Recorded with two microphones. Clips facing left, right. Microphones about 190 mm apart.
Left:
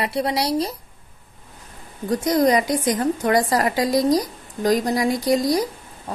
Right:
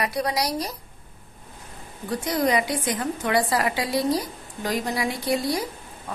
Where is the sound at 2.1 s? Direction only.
40° left (ahead or behind).